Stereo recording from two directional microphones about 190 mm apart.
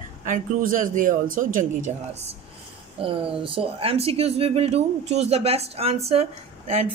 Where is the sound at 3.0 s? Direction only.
30° right (ahead or behind).